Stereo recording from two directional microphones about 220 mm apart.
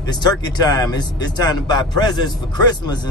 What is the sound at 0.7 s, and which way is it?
Speech, 20° left (ahead or behind).